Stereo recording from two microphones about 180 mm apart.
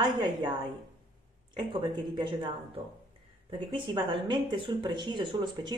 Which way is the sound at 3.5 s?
30° right (ahead or behind).